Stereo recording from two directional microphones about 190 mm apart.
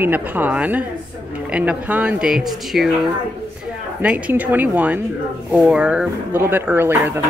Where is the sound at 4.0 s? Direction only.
10° right (ahead or behind).